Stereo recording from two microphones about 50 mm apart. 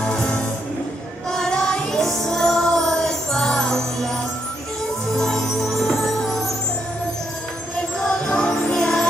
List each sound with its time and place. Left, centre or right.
1.3 s music: centre
5.1 s music: centre
8.0 s music: centre